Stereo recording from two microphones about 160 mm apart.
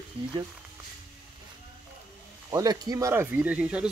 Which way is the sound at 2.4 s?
25° right (ahead or behind).